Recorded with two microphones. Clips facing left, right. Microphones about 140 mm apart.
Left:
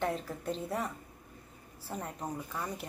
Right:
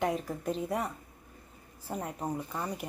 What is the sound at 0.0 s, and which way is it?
Speech, 10° right (ahead or behind).